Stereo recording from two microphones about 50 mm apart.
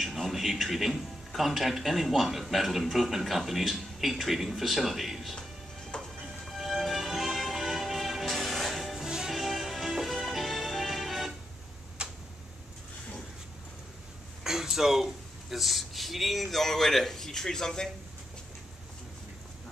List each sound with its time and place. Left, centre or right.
0.0 s a man's voice: centre
5.9 s music: centre
6.4 s music: centre
12.0 s tick-tock: centre
14.4 s speech: centre